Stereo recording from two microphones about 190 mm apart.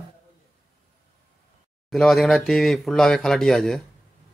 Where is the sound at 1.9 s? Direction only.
Centre (ahead or behind).